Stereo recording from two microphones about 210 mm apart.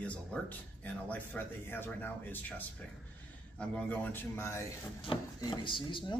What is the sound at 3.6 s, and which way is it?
A man's voice, 5° left (ahead or behind).